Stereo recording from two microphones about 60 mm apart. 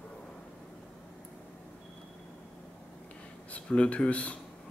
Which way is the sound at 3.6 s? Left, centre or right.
Centre.